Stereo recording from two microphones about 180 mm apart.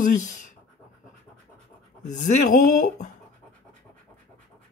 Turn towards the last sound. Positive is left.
turn(degrees=45)  # may be behind; listen again after turning